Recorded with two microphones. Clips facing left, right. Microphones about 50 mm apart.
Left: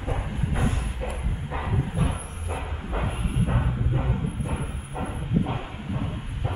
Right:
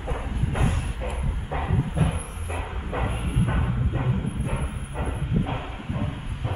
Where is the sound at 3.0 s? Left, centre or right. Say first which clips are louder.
Right 1 dB; centre.